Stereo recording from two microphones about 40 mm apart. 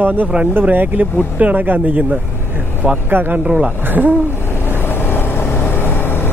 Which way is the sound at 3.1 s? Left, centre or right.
Right.